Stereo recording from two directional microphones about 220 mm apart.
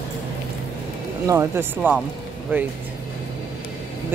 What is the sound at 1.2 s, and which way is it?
Speech, 10° right (ahead or behind).